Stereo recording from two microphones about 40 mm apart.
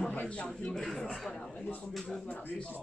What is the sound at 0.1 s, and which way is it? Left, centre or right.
Speech, left.